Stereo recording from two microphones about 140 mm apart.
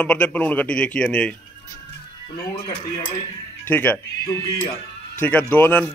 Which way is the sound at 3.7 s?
15° left (ahead or behind).